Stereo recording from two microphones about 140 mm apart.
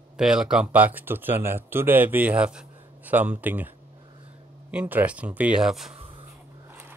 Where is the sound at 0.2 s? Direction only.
5° right (ahead or behind).